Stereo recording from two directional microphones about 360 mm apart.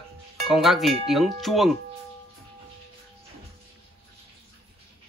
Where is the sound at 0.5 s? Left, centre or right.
Centre.